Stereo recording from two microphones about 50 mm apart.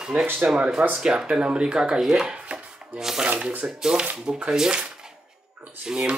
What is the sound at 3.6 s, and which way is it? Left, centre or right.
Speech, centre.